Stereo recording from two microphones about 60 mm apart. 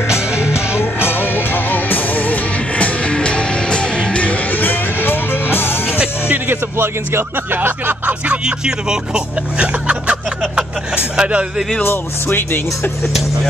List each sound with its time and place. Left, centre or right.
0.4 s music: left
5.9 s music: right
6.5 s a sound: right
8.3 s speech: centre
11.1 s speech: centre
11.8 s speech: left